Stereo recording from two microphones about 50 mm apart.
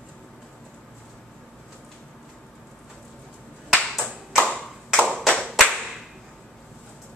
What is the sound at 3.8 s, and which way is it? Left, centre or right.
Clapping, centre.